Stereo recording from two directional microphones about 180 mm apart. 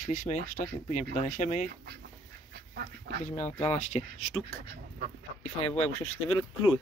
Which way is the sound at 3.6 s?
40° left (ahead or behind).